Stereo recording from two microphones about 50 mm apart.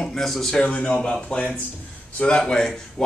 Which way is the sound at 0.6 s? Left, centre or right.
Left.